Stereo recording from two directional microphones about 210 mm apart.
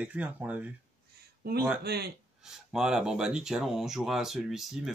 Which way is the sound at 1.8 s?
50° right (ahead or behind).